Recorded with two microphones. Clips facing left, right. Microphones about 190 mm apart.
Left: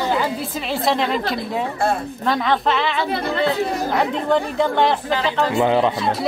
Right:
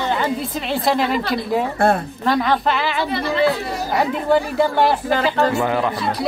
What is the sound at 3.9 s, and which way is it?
Speech, 5° right (ahead or behind).